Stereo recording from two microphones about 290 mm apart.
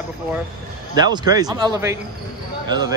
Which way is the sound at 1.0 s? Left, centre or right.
Centre.